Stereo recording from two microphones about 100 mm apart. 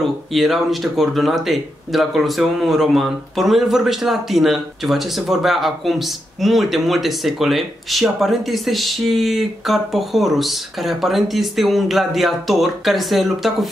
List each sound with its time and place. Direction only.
0.3 s speech: centre (ahead or behind)